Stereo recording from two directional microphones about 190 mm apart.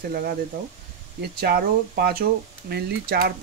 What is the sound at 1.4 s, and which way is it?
Speech, 55° right (ahead or behind).